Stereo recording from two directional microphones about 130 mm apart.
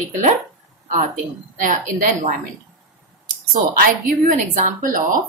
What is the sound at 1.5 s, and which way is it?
Speech, 90° right.